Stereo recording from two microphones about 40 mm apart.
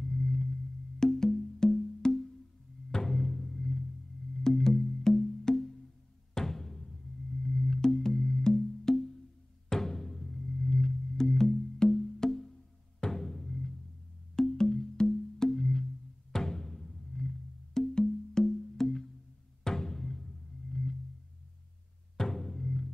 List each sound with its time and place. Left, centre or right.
0.0 s a sound: centre
0.9 s music: centre
14.3 s wood block: centre
19.6 s music: centre
22.1 s music: centre